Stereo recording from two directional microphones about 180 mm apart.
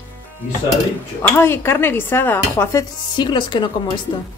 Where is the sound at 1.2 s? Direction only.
15° left (ahead or behind).